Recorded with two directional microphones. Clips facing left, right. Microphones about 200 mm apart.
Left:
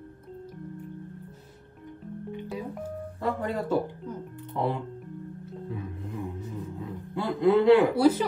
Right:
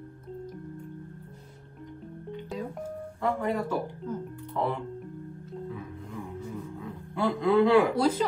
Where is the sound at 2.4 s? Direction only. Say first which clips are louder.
Right 1 dB; centre (ahead or behind).